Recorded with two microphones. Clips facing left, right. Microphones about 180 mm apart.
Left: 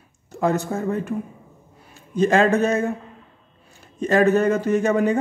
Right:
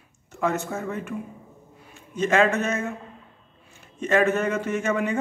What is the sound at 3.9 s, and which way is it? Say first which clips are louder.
A man's voice: left 4 dB; 35° left (ahead or behind).